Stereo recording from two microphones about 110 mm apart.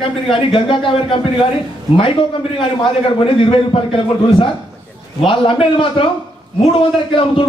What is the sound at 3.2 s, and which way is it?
Speech, 55° left (ahead or behind).